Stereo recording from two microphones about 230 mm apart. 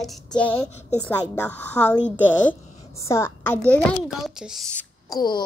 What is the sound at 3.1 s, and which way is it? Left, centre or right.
A child's voice, centre.